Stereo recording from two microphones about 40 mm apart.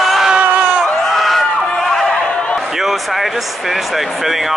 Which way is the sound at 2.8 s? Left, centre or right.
Centre.